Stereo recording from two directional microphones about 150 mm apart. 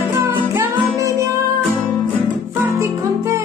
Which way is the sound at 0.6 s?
20° right (ahead or behind).